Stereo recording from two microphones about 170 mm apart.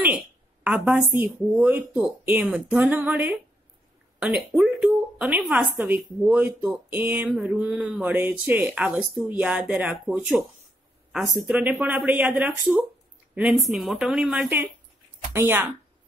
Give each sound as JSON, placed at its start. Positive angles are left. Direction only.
{"t": 0.7, "sound": "speech", "side_deg": -10}